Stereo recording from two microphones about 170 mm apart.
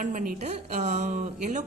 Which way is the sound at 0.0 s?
50° right (ahead or behind).